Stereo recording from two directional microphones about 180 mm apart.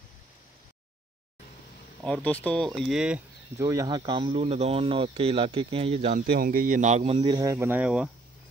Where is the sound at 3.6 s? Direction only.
15° right (ahead or behind); by 7.4 s 35° right (ahead or behind).